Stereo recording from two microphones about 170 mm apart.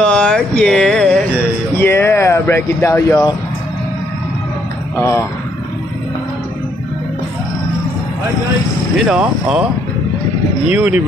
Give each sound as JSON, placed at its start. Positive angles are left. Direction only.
{"t": 0.1, "sound": "a sound", "side_deg": 5}
{"t": 4.9, "sound": "speech", "side_deg": 15}
{"t": 8.9, "sound": "speech", "side_deg": -5}
{"t": 10.7, "sound": "speech", "side_deg": -5}